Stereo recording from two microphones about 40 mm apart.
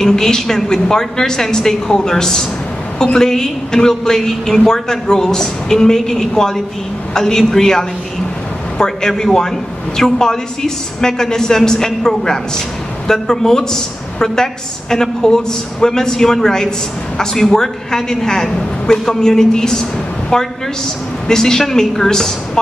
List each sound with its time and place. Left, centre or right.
0.0 s a woman's voice: centre